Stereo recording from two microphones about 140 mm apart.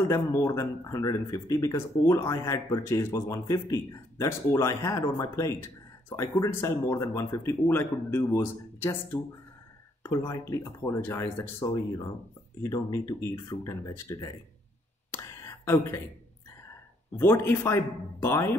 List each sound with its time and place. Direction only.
0.1 s speech: 20° left (ahead or behind)
15.0 s whispering: 20° left (ahead or behind)
17.2 s speech: 15° left (ahead or behind)